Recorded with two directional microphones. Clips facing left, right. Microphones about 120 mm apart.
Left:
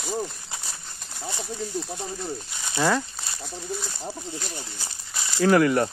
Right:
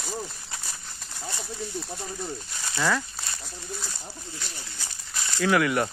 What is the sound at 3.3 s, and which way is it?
Speech, centre (ahead or behind).